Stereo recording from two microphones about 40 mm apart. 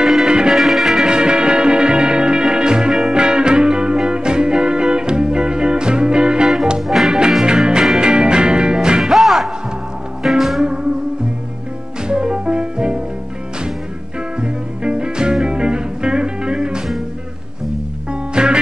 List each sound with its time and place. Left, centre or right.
0.0 s music: centre
0.3 s music: right
0.6 s music: centre
0.9 s music: right
9.1 s music: centre
10.6 s music: right
12.0 s music: right
14.4 s music: right
18.3 s music: right